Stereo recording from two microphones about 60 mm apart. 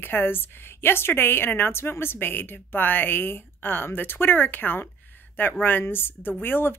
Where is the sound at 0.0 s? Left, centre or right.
Left.